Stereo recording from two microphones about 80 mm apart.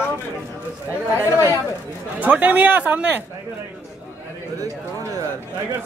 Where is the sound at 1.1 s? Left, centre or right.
Left.